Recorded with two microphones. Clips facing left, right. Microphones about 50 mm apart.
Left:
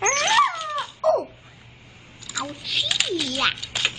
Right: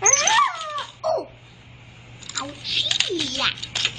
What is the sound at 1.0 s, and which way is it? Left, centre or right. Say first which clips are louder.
Crow: left 3 dB; centre.